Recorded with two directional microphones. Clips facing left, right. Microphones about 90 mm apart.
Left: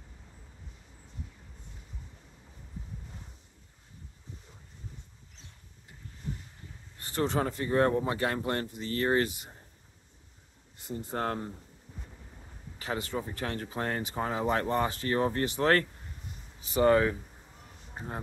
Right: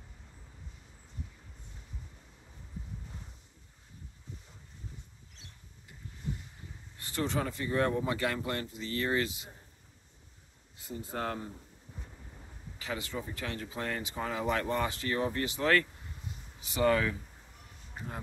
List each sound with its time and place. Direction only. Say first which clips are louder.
7.0 s speech: left 4 dB; 40° left (ahead or behind)
11.1 s speech: left 3 dB; 40° left (ahead or behind)
12.7 s speech: left 4 dB; 40° left (ahead or behind)